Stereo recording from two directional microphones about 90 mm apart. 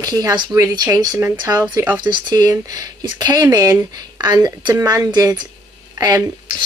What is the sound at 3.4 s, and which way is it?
Speech, 40° right (ahead or behind).